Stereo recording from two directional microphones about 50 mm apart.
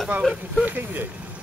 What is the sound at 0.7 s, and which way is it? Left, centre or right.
Speech, right.